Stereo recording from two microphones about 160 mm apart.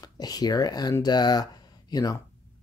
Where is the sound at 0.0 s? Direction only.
25° left (ahead or behind).